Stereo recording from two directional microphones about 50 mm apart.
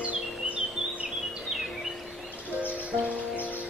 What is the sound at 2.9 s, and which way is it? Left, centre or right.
Music, right.